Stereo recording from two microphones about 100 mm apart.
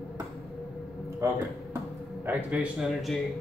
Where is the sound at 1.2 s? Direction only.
25° right (ahead or behind).